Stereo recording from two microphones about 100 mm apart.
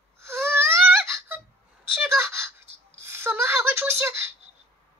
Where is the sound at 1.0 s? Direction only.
20° right (ahead or behind).